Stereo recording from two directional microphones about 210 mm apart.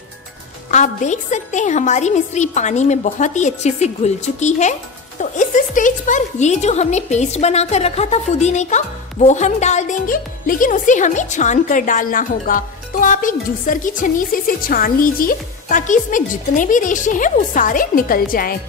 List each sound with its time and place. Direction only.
0.7 s a woman's voice: 35° left (ahead or behind)